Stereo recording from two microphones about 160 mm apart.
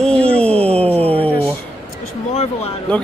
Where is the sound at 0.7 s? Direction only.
40° right (ahead or behind).